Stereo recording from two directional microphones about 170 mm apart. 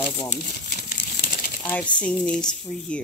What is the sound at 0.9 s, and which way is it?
Crumpling, 65° left (ahead or behind).